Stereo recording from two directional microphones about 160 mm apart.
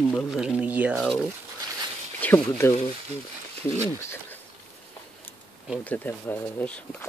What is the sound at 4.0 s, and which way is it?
Speech, 15° left (ahead or behind).